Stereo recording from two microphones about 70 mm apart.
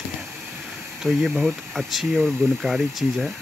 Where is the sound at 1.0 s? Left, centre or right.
Centre.